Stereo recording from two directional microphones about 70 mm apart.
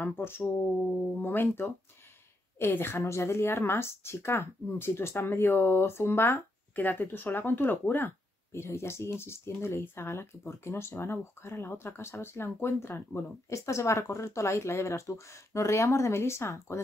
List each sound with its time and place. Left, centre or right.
0.0 s speech: left